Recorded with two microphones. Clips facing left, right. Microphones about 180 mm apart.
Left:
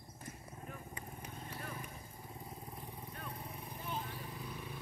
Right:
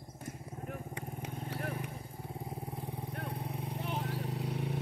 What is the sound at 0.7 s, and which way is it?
Vehicle, 70° right (ahead or behind).